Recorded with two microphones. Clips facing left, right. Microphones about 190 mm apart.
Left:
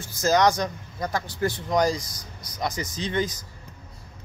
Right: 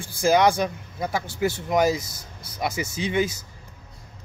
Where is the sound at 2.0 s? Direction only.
25° right (ahead or behind).